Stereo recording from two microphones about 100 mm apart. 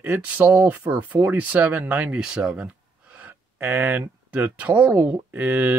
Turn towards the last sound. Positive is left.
turn(degrees=-20)  # may be behind; listen again after turning